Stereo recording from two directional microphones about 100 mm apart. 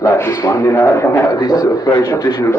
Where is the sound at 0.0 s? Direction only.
25° left (ahead or behind).